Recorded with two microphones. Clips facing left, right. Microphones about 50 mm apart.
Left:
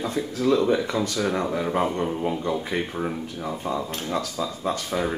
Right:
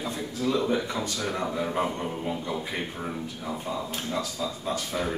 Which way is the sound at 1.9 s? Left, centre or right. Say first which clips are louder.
Left 5 dB; left.